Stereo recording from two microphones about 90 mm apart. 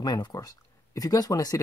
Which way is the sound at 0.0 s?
55° left (ahead or behind).